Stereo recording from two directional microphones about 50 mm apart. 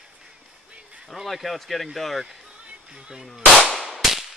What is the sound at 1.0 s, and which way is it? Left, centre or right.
Speech, centre.